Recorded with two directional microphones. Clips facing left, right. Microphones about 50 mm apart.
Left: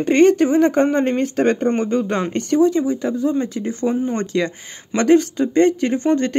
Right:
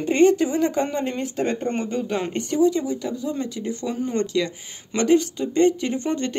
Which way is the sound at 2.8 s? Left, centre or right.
Left.